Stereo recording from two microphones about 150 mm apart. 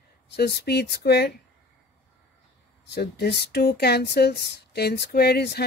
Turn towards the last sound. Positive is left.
turn(degrees=90)